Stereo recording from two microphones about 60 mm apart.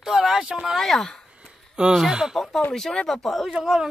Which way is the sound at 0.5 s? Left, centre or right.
Centre.